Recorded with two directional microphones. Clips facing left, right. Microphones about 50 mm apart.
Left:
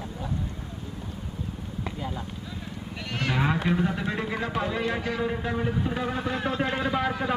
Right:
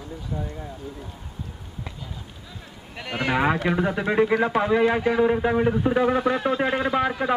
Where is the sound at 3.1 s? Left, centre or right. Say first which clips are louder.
Right 5 dB; centre.